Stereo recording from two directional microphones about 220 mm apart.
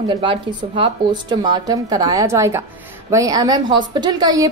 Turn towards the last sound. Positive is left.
turn(degrees=-15)  # may be behind; listen again after turning